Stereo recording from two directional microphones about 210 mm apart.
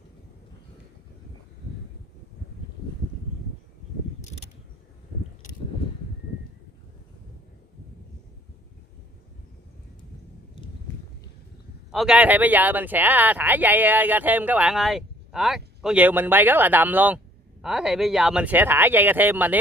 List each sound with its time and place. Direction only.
4.2 s vehicle: 35° left (ahead or behind)
11.9 s speech: 5° right (ahead or behind)